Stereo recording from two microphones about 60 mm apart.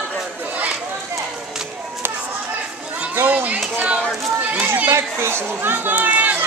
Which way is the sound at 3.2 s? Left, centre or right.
Right.